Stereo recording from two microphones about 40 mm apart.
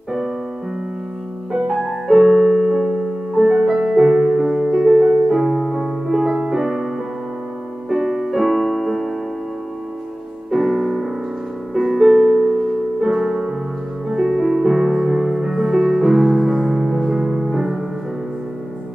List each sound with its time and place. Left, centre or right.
1.5 s music: centre
7.9 s music: centre
10.5 s music: centre
17.1 s music: centre